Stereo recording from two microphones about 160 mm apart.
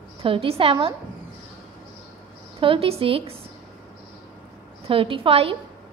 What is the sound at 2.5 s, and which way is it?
Speech, 35° right (ahead or behind).